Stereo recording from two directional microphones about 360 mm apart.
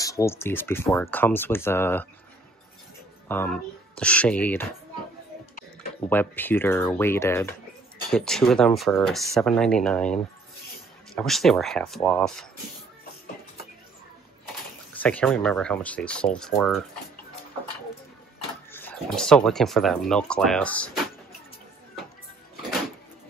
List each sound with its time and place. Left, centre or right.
0.0 s speech: centre
3.3 s speech: centre
6.0 s speech: centre
15.0 s speech: centre
18.7 s speech: centre